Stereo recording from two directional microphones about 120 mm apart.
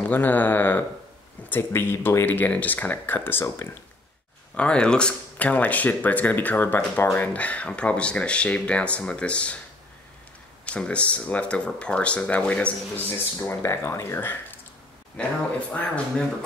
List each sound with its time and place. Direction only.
0.0 s speech: 15° left (ahead or behind)
4.6 s speech: 10° left (ahead or behind)
10.6 s speech: 10° left (ahead or behind)
13.1 s speech: 25° left (ahead or behind)